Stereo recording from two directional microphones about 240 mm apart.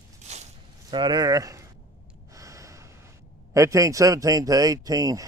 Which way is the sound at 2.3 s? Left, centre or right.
Centre.